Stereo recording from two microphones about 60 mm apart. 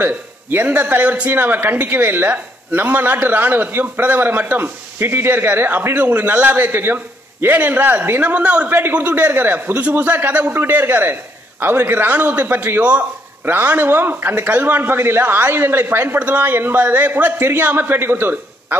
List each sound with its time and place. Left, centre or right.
0.0 s a man's voice: right
16.2 s a man's voice: right